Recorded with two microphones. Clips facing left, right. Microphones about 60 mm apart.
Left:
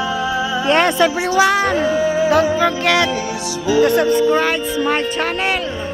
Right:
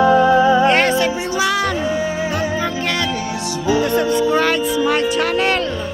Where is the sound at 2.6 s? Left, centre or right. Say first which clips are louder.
Left 5 dB; left.